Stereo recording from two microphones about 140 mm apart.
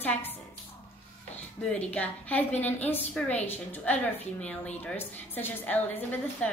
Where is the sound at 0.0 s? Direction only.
15° left (ahead or behind).